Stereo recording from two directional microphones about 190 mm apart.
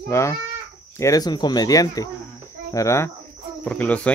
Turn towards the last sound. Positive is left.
turn(degrees=5)  # may be behind; listen again after turning